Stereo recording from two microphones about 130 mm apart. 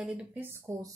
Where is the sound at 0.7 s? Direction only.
25° right (ahead or behind).